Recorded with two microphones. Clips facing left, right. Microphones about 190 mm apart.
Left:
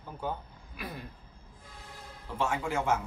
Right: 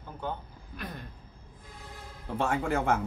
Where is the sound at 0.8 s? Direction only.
10° left (ahead or behind).